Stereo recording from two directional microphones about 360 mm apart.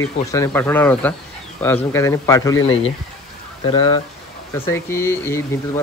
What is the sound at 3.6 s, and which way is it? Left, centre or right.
Speech, centre.